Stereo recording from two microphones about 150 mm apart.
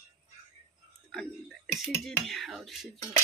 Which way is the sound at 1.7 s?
Centre (ahead or behind).